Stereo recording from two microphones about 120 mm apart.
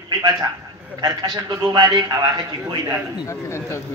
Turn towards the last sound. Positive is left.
turn(degrees=25)  # may be behind; listen again after turning